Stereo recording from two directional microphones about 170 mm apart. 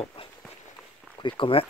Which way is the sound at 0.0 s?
30° left (ahead or behind).